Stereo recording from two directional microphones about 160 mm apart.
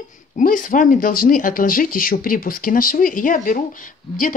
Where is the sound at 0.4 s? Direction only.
55° left (ahead or behind).